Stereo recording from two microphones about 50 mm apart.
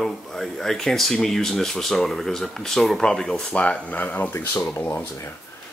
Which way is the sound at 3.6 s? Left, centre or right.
Left.